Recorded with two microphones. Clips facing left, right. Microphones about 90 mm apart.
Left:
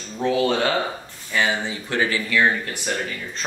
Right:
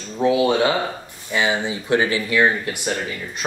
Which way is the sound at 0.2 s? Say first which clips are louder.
Right 3 dB; 15° right (ahead or behind).